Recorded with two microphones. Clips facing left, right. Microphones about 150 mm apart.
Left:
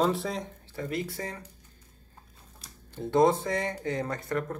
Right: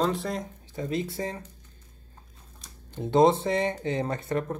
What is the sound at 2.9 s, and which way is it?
Speech, 20° right (ahead or behind).